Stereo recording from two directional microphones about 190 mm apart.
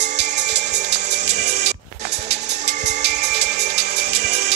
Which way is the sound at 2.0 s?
65° right (ahead or behind).